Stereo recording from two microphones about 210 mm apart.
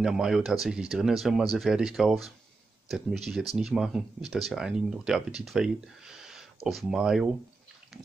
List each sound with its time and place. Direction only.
0.0 s speech: 5° right (ahead or behind)